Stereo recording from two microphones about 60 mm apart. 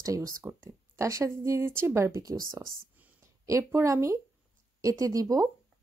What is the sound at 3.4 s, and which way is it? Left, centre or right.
Speech, right.